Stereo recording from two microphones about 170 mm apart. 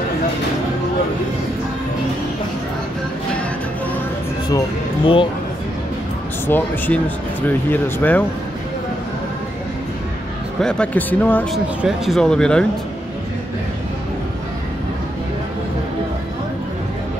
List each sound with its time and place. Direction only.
4.5 s speech: 25° left (ahead or behind)
6.4 s speech: 10° left (ahead or behind)
10.6 s speech: 5° left (ahead or behind)
11.5 s speech: centre (ahead or behind)